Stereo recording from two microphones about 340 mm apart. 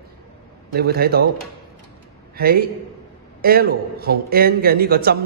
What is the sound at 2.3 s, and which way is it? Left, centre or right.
A man's voice, right.